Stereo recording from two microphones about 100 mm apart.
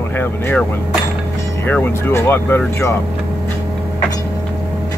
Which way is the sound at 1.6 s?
20° left (ahead or behind).